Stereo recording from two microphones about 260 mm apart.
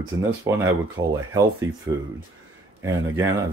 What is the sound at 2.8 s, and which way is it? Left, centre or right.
Speech, centre.